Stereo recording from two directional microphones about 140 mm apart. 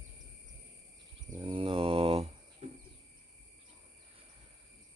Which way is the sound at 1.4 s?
40° right (ahead or behind).